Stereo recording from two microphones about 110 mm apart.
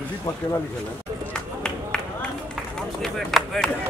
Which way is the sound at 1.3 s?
5° left (ahead or behind).